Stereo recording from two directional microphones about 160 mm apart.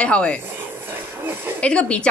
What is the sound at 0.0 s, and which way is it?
Speech, 5° left (ahead or behind).